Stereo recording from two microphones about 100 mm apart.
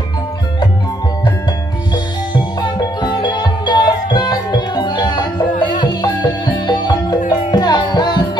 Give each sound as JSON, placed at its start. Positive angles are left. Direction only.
{"t": 2.3, "sound": "music", "side_deg": 50}